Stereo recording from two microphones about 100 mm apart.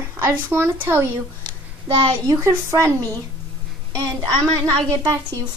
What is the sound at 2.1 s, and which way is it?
A child's voice, 30° right (ahead or behind).